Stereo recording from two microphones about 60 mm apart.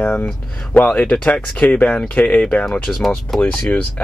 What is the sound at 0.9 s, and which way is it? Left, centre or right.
Speech, centre.